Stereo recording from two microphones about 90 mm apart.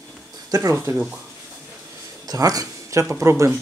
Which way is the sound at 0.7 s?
25° right (ahead or behind).